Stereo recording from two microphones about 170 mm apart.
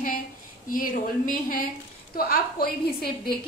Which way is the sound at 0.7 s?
55° left (ahead or behind).